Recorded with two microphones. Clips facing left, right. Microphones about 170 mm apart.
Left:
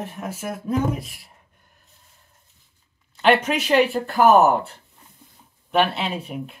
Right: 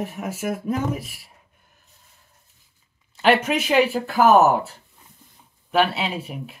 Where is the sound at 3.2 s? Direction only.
5° right (ahead or behind).